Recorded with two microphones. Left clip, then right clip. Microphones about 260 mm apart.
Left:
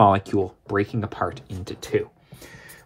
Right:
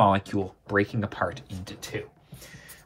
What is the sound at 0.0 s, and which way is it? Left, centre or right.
Speech, left.